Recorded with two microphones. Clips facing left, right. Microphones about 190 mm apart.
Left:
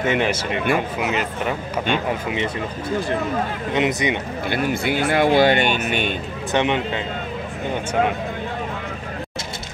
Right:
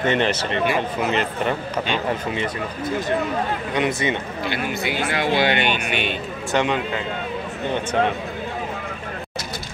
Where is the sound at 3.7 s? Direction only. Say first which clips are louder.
Left 2 dB; 20° left (ahead or behind).